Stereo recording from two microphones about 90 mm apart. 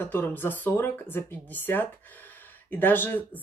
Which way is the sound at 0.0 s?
20° left (ahead or behind).